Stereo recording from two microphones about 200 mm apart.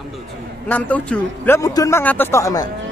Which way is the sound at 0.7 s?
5° left (ahead or behind).